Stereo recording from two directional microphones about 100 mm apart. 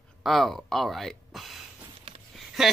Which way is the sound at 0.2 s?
Centre (ahead or behind).